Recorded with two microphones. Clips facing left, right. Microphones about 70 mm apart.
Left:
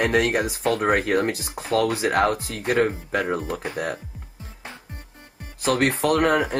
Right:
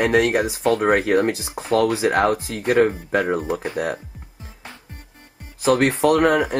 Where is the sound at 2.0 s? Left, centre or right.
Centre.